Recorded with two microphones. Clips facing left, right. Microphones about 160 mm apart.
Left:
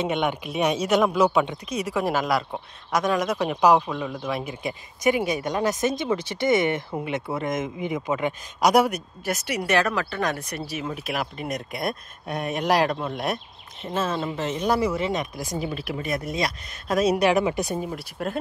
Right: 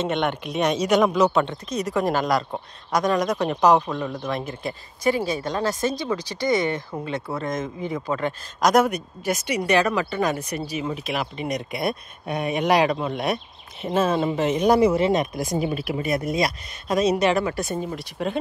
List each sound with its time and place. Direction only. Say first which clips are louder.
0.0 s speech: right 1 dB; 10° left (ahead or behind)
13.8 s speech: right 5 dB; 15° right (ahead or behind)
15.0 s speech: right 6 dB; 60° right (ahead or behind)
15.9 s speech: right 4 dB; 10° right (ahead or behind)
16.8 s speech: even; 5° left (ahead or behind)
17.8 s speech: right 2 dB; 5° left (ahead or behind)